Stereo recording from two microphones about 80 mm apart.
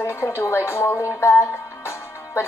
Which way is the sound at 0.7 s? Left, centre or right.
Left.